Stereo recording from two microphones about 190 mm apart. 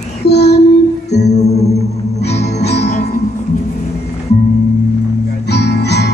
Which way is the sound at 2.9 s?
40° left (ahead or behind).